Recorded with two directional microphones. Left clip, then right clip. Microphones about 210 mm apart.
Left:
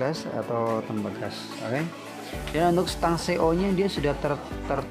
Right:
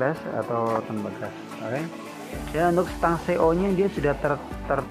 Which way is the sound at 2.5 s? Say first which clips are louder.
Right 1 dB; 30° left (ahead or behind).